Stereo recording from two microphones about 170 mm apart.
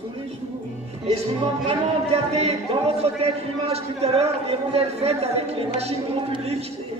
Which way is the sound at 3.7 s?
35° right (ahead or behind).